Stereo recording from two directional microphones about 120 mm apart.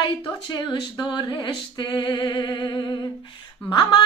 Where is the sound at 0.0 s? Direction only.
40° left (ahead or behind).